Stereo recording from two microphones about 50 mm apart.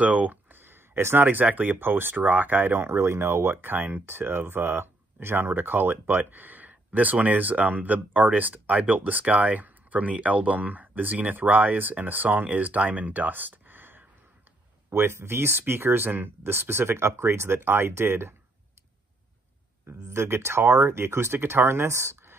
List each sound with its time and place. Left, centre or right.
0.0 s speech: right
14.9 s speech: right
19.9 s speech: right